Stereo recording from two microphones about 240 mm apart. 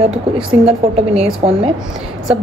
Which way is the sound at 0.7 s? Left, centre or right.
Right.